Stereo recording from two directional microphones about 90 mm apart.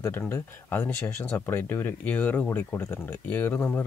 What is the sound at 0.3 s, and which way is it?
Speech, 25° left (ahead or behind).